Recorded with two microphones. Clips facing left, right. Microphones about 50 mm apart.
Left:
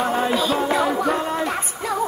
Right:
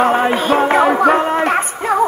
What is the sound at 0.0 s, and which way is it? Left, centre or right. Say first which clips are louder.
Music: right 6 dB; right.